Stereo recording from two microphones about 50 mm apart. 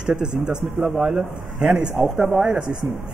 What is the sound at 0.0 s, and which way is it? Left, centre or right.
Speech, centre.